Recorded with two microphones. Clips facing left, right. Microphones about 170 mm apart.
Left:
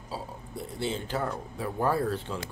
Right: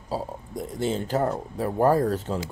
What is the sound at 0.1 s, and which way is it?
Speech, 40° right (ahead or behind).